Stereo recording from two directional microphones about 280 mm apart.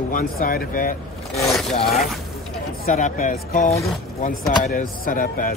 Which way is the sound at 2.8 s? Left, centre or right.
Left.